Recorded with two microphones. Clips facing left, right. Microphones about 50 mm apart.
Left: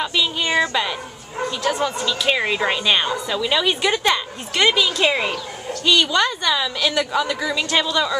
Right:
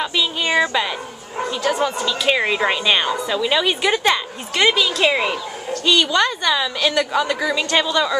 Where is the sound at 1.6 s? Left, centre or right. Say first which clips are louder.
Right 2 dB; centre.